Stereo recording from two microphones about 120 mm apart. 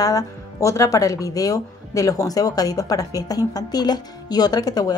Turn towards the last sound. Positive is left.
turn(degrees=35)  # may be behind; listen again after turning